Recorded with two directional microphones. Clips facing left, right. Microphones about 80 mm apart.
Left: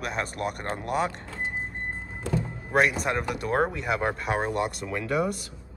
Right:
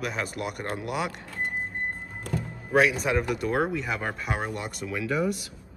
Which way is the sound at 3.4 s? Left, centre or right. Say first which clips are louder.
Even; left.